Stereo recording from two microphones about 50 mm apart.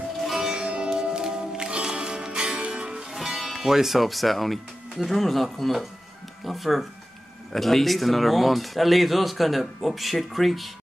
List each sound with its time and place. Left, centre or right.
0.2 s music: centre
0.5 s music: centre
3.1 s speech: centre